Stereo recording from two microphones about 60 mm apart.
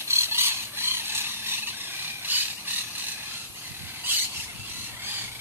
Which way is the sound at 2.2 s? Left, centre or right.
Right.